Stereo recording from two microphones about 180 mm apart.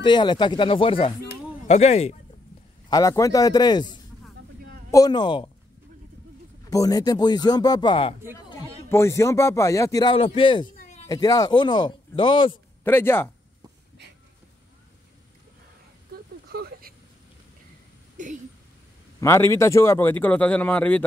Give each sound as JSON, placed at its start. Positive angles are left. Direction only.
{"t": 0.0, "sound": "speech", "side_deg": 25}
{"t": 2.9, "sound": "speech", "side_deg": 20}
{"t": 4.9, "sound": "speech", "side_deg": 20}
{"t": 6.7, "sound": "speech", "side_deg": 20}
{"t": 8.8, "sound": "a man's voice", "side_deg": 15}
{"t": 10.1, "sound": "speech", "side_deg": 30}
{"t": 10.8, "sound": "a sound", "side_deg": 40}
{"t": 11.1, "sound": "speech", "side_deg": 20}
{"t": 12.8, "sound": "a man's voice", "side_deg": 10}
{"t": 16.4, "sound": "a sound", "side_deg": -60}
{"t": 18.1, "sound": "a sound", "side_deg": -45}
{"t": 19.1, "sound": "a man's voice", "side_deg": 15}